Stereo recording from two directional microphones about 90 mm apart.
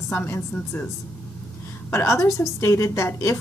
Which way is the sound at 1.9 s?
35° left (ahead or behind).